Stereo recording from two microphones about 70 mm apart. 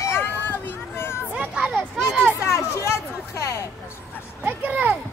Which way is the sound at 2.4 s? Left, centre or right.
Left.